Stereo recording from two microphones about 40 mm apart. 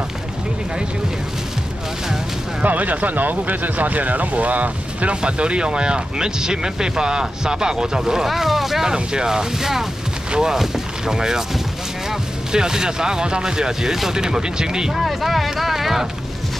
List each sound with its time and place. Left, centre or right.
2.6 s speech: right
5.2 s speech: right; by 8.8 s centre
8.8 s speech: centre
15.0 s speech: centre